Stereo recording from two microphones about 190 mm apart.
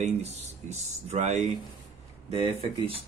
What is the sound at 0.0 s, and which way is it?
Speech, 35° right (ahead or behind).